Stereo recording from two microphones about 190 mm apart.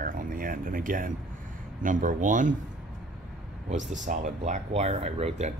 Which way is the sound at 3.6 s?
40° right (ahead or behind).